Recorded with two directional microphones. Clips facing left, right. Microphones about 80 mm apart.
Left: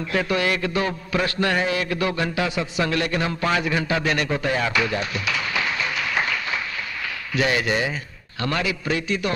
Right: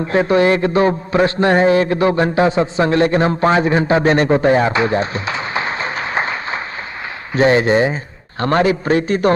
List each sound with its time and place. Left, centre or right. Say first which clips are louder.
0.1 s a man's voice: right 9 dB; right